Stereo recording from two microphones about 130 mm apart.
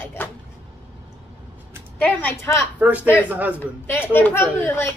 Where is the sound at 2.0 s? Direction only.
15° left (ahead or behind).